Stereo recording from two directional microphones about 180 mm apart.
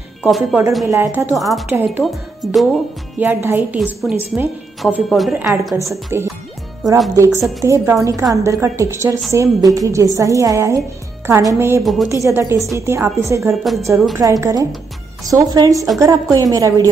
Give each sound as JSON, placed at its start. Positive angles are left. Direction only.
{"t": 0.2, "sound": "speech", "side_deg": 0}
{"t": 0.8, "sound": "a woman's voice", "side_deg": -15}
{"t": 1.3, "sound": "speech", "side_deg": 0}
{"t": 1.7, "sound": "a woman's voice", "side_deg": -10}
{"t": 2.0, "sound": "speech", "side_deg": 0}
{"t": 3.2, "sound": "a woman's voice", "side_deg": -10}
{"t": 5.4, "sound": "a woman's voice", "side_deg": -15}
{"t": 11.8, "sound": "speech", "side_deg": 0}
{"t": 12.1, "sound": "a woman's voice", "side_deg": -15}